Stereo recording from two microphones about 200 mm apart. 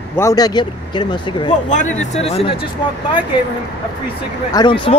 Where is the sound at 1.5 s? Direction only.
35° left (ahead or behind).